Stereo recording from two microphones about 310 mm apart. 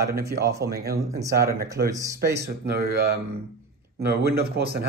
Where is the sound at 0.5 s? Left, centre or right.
Centre.